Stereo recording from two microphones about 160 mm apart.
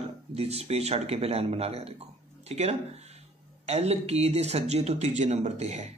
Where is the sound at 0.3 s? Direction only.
40° right (ahead or behind).